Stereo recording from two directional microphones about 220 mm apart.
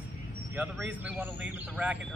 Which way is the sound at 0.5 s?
5° right (ahead or behind).